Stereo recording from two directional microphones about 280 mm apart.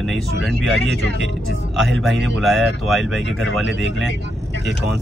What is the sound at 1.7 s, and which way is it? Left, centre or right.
Speech, centre.